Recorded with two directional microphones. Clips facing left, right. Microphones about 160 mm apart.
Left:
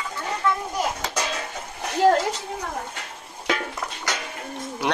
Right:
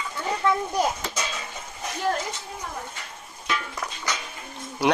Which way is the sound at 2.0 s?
85° left.